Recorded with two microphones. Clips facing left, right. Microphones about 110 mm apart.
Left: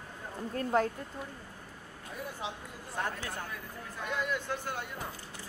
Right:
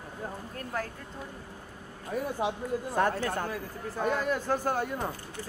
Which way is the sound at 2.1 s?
60° right (ahead or behind).